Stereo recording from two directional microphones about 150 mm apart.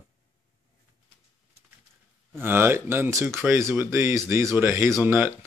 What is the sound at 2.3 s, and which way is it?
Speech, 15° right (ahead or behind).